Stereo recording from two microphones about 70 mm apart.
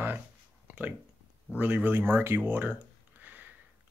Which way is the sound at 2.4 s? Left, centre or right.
Right.